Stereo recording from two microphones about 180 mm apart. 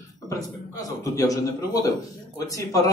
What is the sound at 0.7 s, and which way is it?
Speech, 20° left (ahead or behind).